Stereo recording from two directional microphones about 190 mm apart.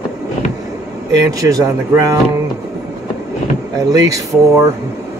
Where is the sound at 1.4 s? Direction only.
15° right (ahead or behind).